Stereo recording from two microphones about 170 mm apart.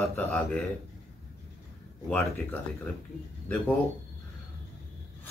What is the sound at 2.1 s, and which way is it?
Speech, 10° left (ahead or behind).